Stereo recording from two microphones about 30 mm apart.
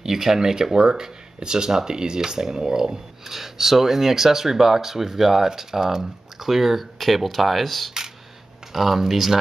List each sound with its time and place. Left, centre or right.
0.0 s speech: centre
3.3 s speech: centre
6.4 s speech: centre